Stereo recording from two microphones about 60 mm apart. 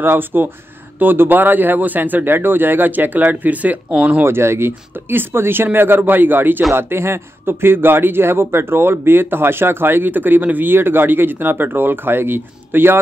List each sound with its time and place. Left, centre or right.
0.0 s a man's voice: right
4.2 s a man's voice: right